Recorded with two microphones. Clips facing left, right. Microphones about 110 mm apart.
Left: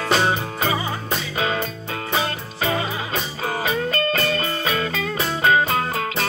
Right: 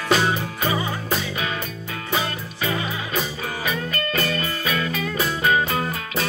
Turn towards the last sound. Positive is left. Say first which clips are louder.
# left 2 dB
turn(degrees=35)  # may be behind; listen again after turning